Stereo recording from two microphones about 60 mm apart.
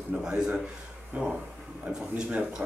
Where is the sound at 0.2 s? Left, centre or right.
Centre.